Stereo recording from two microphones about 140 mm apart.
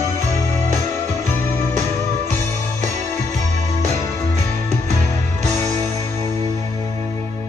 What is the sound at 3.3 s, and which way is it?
Music, 55° right (ahead or behind).